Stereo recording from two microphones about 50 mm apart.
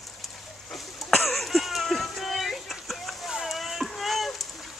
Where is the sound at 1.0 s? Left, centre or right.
Centre.